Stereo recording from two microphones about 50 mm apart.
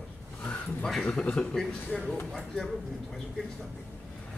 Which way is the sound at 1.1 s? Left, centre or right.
Left.